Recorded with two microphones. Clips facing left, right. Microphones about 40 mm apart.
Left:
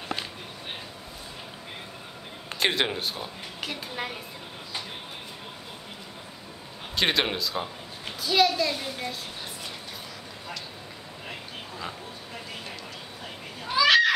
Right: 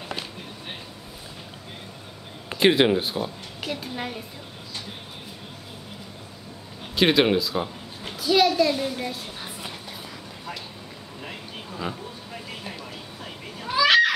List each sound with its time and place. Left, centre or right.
2.5 s a woman's voice: centre
7.0 s a child's voice: centre
13.2 s children playing: centre